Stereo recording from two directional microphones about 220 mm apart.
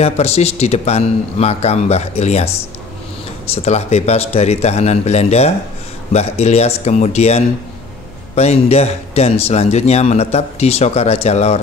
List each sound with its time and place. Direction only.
0.0 s speech: 30° left (ahead or behind)
3.5 s speech: 30° left (ahead or behind)